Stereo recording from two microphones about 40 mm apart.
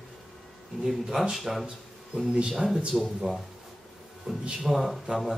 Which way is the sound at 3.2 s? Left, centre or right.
Centre.